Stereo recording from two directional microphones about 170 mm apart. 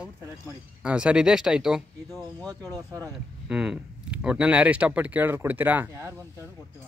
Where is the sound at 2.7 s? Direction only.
20° right (ahead or behind).